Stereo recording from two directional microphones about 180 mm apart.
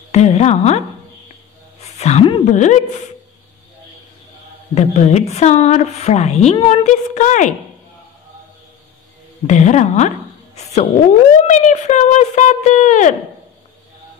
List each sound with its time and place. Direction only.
0.1 s a sound: 35° left (ahead or behind)
4.7 s a woman's voice: 35° left (ahead or behind)
9.5 s a woman's voice: 40° left (ahead or behind)